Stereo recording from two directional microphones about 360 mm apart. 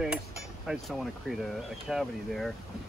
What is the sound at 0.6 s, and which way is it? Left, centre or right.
Speech, centre.